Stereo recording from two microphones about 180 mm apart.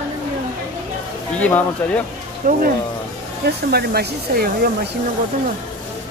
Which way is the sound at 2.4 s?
50° right (ahead or behind).